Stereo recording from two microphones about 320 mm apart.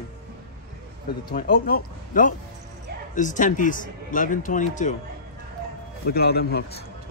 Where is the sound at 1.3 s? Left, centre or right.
Left.